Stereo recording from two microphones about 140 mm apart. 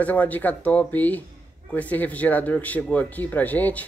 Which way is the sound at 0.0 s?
10° left (ahead or behind).